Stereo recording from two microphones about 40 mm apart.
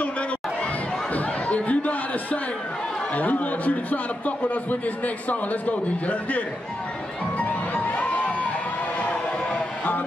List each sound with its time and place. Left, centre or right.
1.1 s a sound: left
3.2 s a man's voice: left
7.3 s music: left
9.5 s music: left